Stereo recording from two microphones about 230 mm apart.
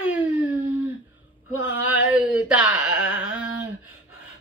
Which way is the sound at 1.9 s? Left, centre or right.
Centre.